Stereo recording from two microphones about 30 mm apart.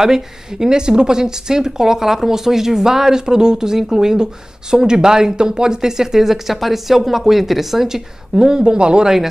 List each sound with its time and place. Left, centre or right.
0.0 s speech: centre
8.6 s speech: right
9.0 s speech: centre